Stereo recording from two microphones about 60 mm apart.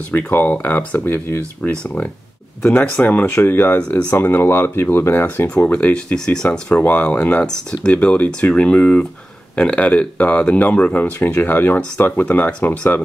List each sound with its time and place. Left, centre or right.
0.1 s speech: left
2.7 s speech: left
3.3 s speech: left
5.7 s speech: left
6.1 s speech: centre; by 12.3 s left
12.3 s speech: left